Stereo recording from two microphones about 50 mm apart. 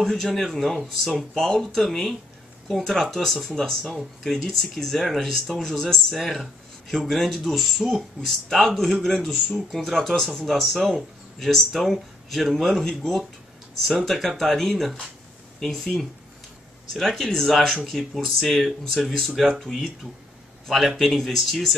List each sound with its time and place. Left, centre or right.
0.0 s speech: centre
6.1 s speech: centre
16.9 s speech: centre